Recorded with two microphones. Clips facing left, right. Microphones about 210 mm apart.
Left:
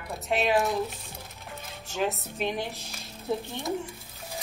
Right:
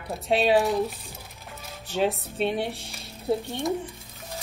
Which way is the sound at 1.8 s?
30° right (ahead or behind).